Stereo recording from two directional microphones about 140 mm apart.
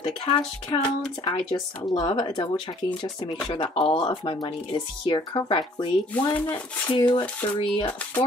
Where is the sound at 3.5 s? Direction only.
40° left (ahead or behind).